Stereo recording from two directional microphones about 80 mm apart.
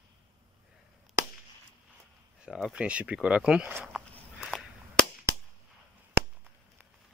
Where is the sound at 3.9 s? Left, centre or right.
Centre.